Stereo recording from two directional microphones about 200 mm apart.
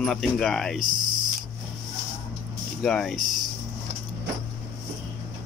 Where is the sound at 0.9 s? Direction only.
20° right (ahead or behind).